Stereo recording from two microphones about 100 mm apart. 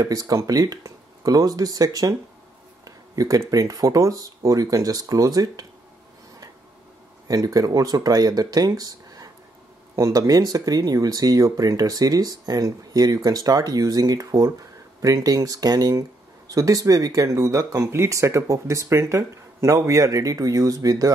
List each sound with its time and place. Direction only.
0.0 s speech: 35° right (ahead or behind)
7.2 s speech: 35° right (ahead or behind)